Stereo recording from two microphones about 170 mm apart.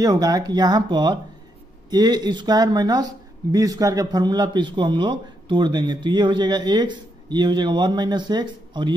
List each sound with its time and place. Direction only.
0.0 s speech: 20° right (ahead or behind)